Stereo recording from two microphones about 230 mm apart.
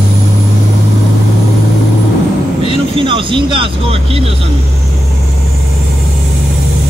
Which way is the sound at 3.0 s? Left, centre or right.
Right.